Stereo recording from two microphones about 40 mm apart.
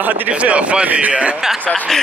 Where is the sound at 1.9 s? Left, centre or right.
Centre.